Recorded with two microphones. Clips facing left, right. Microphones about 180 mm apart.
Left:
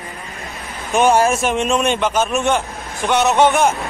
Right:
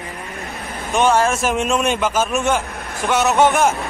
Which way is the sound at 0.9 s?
10° left (ahead or behind).